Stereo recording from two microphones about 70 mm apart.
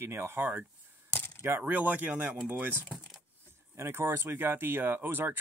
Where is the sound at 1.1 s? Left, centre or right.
Left.